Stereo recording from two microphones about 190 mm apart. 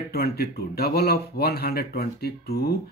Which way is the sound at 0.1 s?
55° left (ahead or behind).